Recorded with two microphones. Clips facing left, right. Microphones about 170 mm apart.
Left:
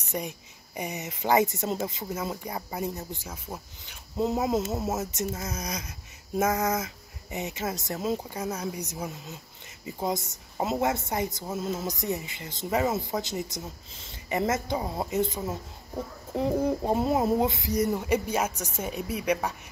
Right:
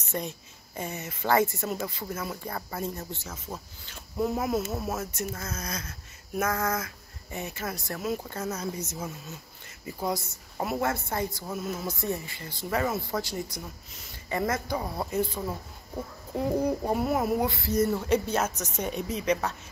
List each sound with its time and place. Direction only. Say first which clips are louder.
0.1 s speech: even; 15° left (ahead or behind)
8.3 s speech: left 1 dB; 10° left (ahead or behind)
16.8 s speech: left 2 dB; 25° left (ahead or behind)